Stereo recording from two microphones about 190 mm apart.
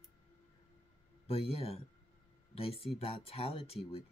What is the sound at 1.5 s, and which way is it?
Speech, 30° left (ahead or behind).